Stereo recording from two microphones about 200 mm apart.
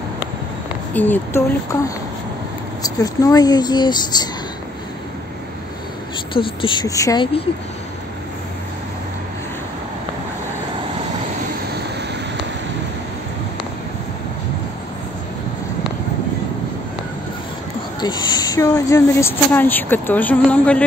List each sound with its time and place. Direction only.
0.9 s speech: 10° left (ahead or behind)
2.8 s speech: 20° left (ahead or behind)
6.3 s speech: 25° left (ahead or behind)
18.0 s speech: 20° left (ahead or behind)